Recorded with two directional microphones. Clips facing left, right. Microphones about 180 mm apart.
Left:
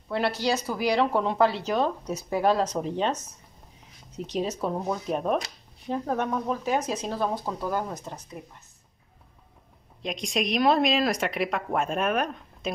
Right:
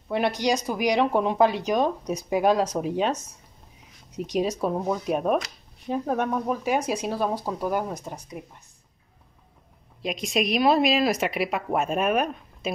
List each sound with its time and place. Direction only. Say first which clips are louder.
0.1 s speech: right 2 dB; 15° right (ahead or behind)
10.0 s speech: right 3 dB; 5° right (ahead or behind)